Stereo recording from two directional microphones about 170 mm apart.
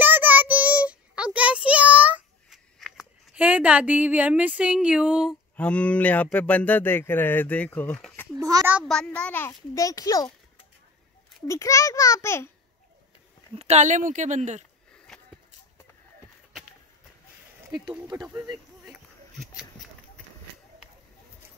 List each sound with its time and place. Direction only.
0.0 s child singing: 10° right (ahead or behind)
5.6 s speech: 5° left (ahead or behind)
8.4 s speech: 20° right (ahead or behind)
8.7 s a child's voice: 5° left (ahead or behind)
9.5 s a child's voice: 20° left (ahead or behind)
11.4 s speech: 15° left (ahead or behind)
13.6 s speech: 40° right (ahead or behind)
15.1 s a sound: 5° left (ahead or behind)
17.8 s speech: 25° right (ahead or behind)